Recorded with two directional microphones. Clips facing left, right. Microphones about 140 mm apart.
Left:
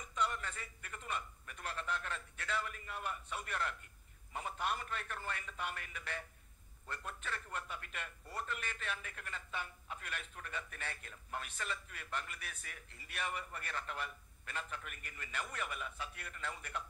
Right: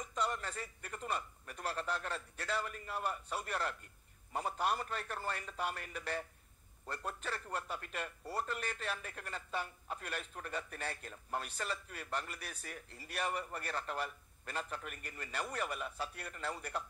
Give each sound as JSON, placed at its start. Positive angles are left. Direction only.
{"t": 0.1, "sound": "speech", "side_deg": -35}